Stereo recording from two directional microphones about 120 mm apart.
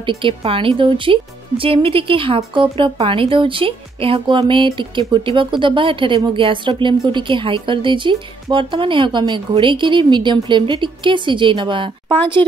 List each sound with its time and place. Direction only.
0.0 s speech: 45° right (ahead or behind)
12.4 s speech: 15° left (ahead or behind)